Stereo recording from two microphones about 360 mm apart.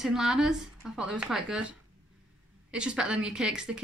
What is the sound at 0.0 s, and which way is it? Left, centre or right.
A woman's voice, centre.